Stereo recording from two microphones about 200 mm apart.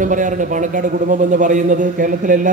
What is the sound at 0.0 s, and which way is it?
A man's voice, 40° right (ahead or behind).